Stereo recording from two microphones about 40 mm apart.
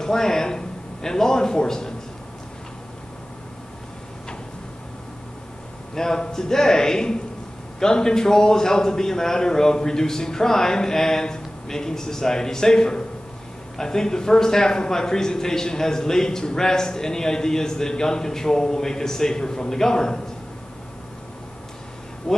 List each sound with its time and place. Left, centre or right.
0.0 s a man's voice: centre
5.9 s a man's voice: centre